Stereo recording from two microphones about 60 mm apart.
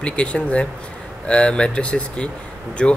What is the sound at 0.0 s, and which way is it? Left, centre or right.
Speech, centre.